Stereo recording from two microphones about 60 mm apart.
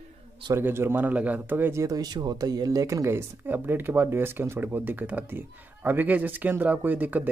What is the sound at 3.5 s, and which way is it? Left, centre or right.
Speech, right.